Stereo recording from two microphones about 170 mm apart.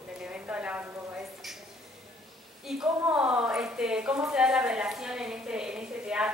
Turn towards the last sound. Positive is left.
turn(degrees=-5)  # may be behind; listen again after turning